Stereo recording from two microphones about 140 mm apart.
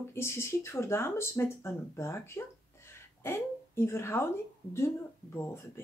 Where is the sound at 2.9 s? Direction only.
20° left (ahead or behind).